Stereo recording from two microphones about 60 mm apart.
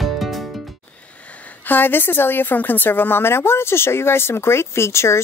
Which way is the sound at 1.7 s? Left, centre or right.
Left.